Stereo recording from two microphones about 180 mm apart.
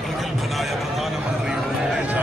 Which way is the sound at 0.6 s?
Centre (ahead or behind).